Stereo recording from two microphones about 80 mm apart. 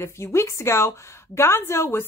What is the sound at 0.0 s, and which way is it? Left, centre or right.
A woman's voice, left.